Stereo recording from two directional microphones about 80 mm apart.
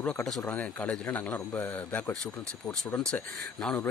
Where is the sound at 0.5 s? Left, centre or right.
Centre.